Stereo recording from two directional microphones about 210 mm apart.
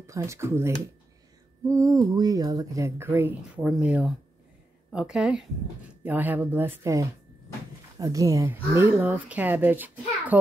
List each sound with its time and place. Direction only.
0.0 s a woman's voice: 15° right (ahead or behind)